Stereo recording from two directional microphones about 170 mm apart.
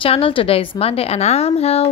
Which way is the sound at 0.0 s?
30° left (ahead or behind).